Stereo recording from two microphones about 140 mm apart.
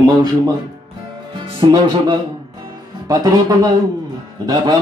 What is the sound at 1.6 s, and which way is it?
Speech, 30° right (ahead or behind).